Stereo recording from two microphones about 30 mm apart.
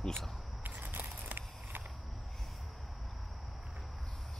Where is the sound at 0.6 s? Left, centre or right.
Right.